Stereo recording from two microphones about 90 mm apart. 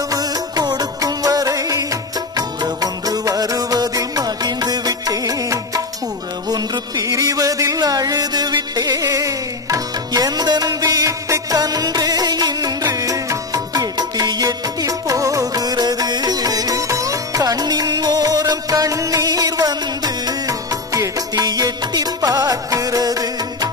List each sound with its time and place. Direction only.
0.1 s music: 45° right (ahead or behind)